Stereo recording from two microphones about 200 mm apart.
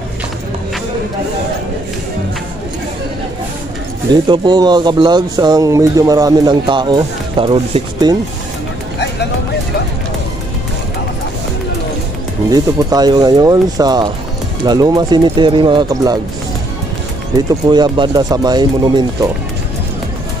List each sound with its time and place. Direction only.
4.1 s speech: 20° right (ahead or behind)
12.4 s speech: 20° right (ahead or behind)
17.6 s speech: 20° right (ahead or behind)